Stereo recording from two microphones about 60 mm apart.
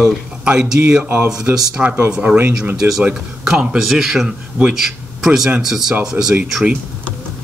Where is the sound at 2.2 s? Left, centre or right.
Right.